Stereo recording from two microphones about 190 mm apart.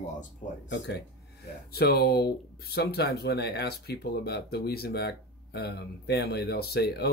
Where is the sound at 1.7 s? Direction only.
55° left (ahead or behind).